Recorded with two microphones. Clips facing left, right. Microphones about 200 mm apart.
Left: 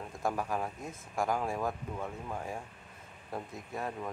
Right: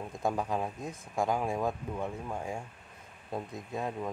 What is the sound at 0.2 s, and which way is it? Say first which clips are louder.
Speech: right 2 dB; 20° right (ahead or behind).